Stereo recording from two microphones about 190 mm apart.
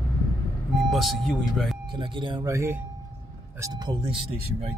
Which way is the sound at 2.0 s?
25° right (ahead or behind).